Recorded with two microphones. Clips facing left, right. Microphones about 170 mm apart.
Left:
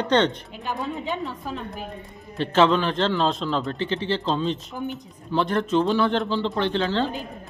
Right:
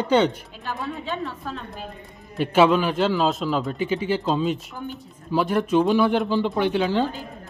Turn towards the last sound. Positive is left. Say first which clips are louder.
# right 2 dB
turn(degrees=-10)  # may be behind; listen again after turning